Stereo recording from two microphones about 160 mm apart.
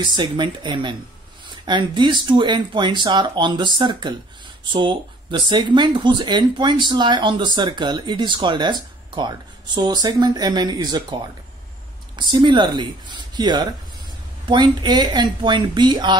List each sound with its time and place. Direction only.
0.0 s speech: 30° right (ahead or behind)
12.2 s speech: 30° right (ahead or behind)